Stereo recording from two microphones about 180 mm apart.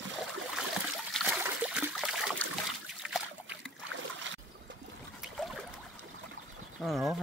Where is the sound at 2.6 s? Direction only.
5° right (ahead or behind).